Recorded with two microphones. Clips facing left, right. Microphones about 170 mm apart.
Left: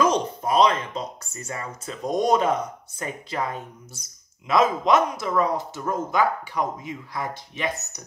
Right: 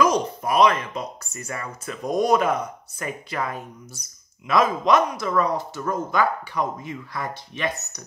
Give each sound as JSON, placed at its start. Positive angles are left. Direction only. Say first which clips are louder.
{"t": 0.0, "sound": "speech", "louder": "right 1 dB", "side_deg": 25}